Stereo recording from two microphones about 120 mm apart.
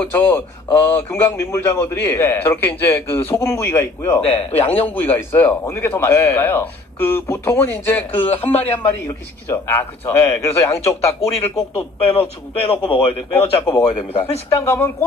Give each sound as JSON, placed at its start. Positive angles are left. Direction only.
{"t": 0.0, "sound": "a man's voice", "side_deg": 15}
{"t": 4.2, "sound": "speech", "side_deg": 55}
{"t": 4.8, "sound": "a man's voice", "side_deg": 15}
{"t": 11.1, "sound": "speech", "side_deg": 60}
{"t": 14.6, "sound": "a man's voice", "side_deg": 20}